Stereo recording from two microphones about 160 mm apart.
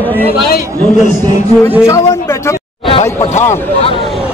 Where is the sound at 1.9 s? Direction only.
15° left (ahead or behind).